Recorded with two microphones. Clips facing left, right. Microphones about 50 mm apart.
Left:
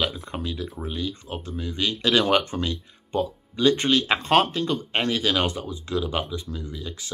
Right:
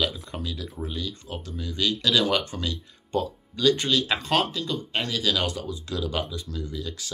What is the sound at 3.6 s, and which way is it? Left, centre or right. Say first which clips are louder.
Speech: left 2 dB; left.